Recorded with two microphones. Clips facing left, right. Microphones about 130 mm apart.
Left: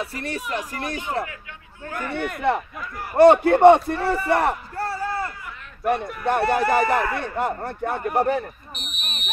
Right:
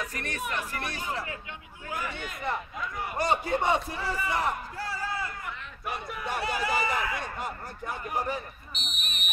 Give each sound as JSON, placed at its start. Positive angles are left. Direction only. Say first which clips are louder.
{"t": 0.0, "sound": "speech", "louder": "left 5 dB", "side_deg": 30}
{"t": 1.2, "sound": "a man's voice", "louder": "left 8 dB", "side_deg": 60}